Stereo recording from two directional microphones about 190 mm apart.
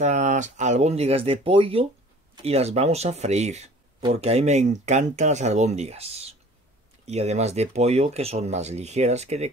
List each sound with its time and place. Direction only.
0.0 s speech: 40° right (ahead or behind)